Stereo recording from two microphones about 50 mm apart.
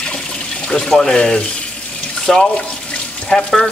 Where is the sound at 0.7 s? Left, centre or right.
Centre.